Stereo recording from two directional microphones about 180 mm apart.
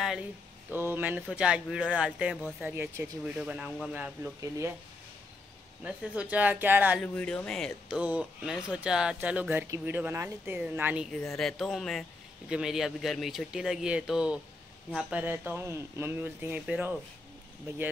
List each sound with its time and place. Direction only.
0.0 s speech: 5° right (ahead or behind)
5.9 s speech: 5° right (ahead or behind)
7.0 s speech: 5° left (ahead or behind)
11.1 s speech: 5° left (ahead or behind)